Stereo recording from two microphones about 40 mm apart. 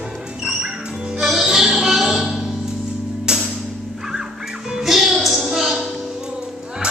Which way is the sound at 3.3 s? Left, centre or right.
Right.